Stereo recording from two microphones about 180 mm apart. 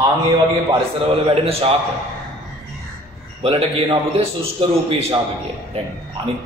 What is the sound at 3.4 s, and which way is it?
A man's voice, 30° right (ahead or behind).